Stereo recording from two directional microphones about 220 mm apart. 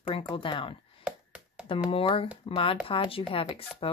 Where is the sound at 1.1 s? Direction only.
5° right (ahead or behind).